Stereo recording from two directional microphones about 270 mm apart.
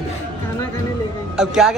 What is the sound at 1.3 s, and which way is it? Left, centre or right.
Speech, centre.